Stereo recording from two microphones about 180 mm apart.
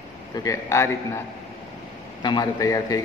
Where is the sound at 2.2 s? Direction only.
25° left (ahead or behind).